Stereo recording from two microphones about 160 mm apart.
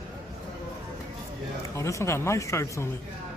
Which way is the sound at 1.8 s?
20° left (ahead or behind).